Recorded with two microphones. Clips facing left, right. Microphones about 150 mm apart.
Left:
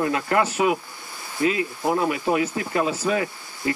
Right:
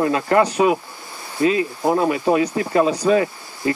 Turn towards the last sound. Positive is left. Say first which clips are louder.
# right 6 dB
turn(degrees=-25)  # may be behind; listen again after turning